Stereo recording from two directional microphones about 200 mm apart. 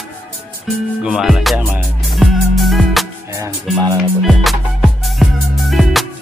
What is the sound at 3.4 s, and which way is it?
Speech, 15° right (ahead or behind).